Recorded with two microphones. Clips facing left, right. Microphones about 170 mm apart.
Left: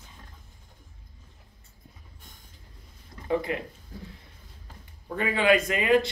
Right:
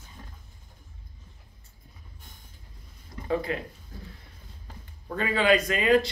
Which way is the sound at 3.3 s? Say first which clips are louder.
Left 1 dB; 20° left (ahead or behind).